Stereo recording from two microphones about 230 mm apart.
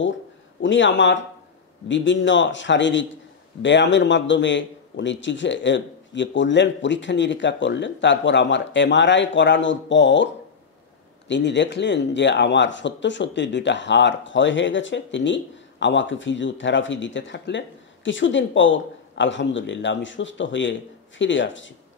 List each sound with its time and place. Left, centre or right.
0.6 s speech: left